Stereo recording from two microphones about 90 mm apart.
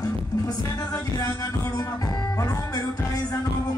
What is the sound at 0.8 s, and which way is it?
Music, 40° left (ahead or behind).